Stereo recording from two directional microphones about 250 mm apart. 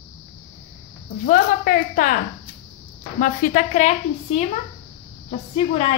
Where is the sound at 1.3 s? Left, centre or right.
Left.